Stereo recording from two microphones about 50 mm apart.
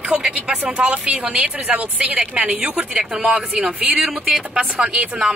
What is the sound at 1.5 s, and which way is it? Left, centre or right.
Speech, right.